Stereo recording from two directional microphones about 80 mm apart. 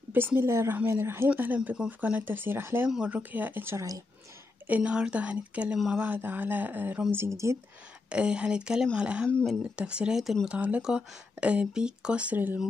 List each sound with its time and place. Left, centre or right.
0.1 s speech: right
1.3 s speech: right
3.7 s speech: right
4.6 s speech: centre; by 7.5 s right
8.1 s speech: centre
10.5 s speech: centre